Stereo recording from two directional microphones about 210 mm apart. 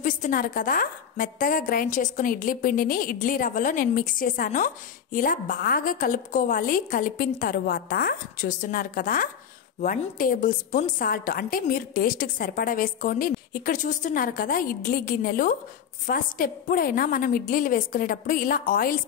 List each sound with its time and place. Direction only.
0.0 s a woman's voice: 40° left (ahead or behind)